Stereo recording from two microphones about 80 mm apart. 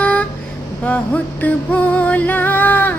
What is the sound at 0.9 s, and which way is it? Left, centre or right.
Music, centre.